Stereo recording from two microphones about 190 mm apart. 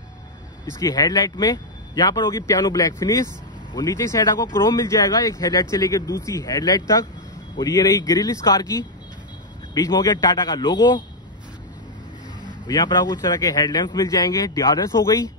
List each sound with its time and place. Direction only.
0.7 s a man's voice: 15° left (ahead or behind)
12.6 s a man's voice: 20° left (ahead or behind)